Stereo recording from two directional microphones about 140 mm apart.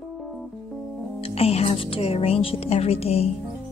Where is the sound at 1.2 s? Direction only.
45° left (ahead or behind).